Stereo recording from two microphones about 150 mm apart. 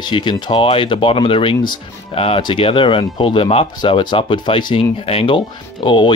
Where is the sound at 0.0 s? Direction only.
30° left (ahead or behind).